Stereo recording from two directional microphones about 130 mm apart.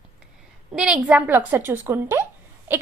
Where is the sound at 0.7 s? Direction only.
5° right (ahead or behind).